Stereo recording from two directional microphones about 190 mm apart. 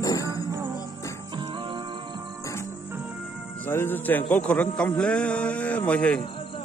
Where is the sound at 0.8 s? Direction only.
15° left (ahead or behind).